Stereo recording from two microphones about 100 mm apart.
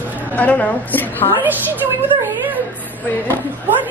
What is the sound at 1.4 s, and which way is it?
Speech, 20° right (ahead or behind).